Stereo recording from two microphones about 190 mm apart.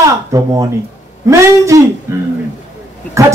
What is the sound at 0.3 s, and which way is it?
A man's voice, 15° right (ahead or behind).